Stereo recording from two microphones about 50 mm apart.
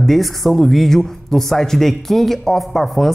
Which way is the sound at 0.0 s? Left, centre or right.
Centre.